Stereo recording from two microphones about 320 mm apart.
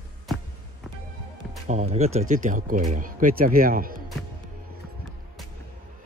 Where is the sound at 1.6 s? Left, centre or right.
Right.